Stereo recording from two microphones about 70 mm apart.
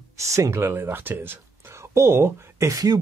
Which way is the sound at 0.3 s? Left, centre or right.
Right.